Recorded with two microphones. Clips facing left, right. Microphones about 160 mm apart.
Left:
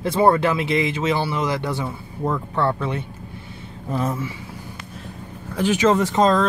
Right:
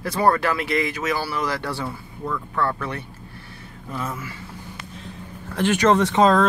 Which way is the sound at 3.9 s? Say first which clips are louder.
Left 6 dB; 35° left (ahead or behind).